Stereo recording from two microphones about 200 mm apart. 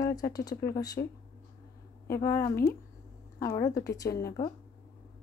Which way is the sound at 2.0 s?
15° left (ahead or behind).